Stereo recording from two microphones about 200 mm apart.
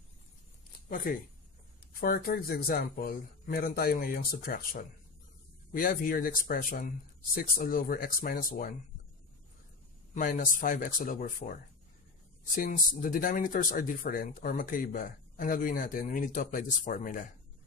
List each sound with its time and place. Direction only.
0.8 s speech: 40° left (ahead or behind)
10.1 s speech: 40° left (ahead or behind)
12.5 s speech: 45° left (ahead or behind)